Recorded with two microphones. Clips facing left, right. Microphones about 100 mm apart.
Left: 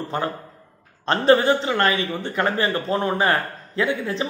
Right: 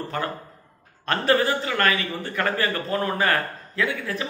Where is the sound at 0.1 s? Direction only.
25° left (ahead or behind).